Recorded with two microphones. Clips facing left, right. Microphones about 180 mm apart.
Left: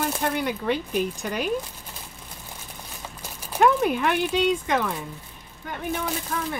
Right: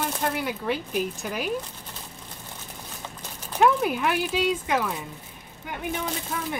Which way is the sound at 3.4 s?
10° left (ahead or behind).